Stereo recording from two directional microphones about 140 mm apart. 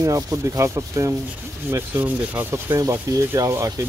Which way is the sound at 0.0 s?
25° right (ahead or behind).